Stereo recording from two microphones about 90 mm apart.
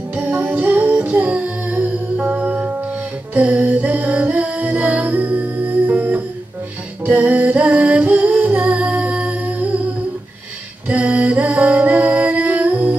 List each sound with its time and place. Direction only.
0.1 s music: 15° right (ahead or behind)
10.9 s music: 15° right (ahead or behind)